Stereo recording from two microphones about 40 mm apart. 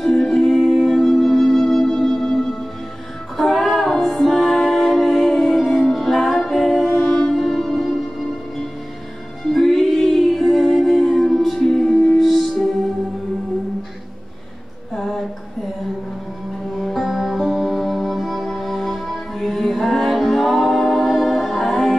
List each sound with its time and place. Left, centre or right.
0.0 s music: centre
7.3 s music: centre
9.5 s music: centre
15.0 s a sound: centre
16.7 s music: centre